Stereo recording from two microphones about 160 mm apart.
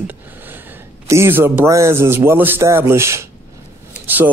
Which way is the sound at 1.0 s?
15° right (ahead or behind).